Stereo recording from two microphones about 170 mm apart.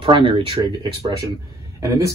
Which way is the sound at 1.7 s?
20° right (ahead or behind).